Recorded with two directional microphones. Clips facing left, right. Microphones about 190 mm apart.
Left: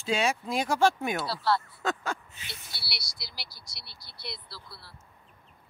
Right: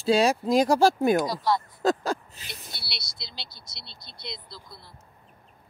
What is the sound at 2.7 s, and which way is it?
Speech, 20° right (ahead or behind).